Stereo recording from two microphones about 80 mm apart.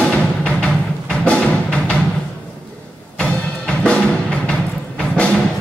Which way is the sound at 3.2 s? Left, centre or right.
Centre.